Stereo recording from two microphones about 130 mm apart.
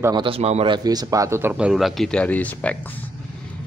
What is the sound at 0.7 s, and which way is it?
Speech, 30° right (ahead or behind).